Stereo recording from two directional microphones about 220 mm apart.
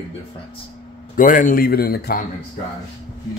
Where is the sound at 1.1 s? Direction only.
40° left (ahead or behind).